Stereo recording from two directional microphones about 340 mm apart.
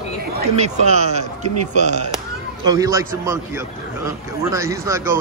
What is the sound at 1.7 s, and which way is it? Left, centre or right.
A man's voice, centre.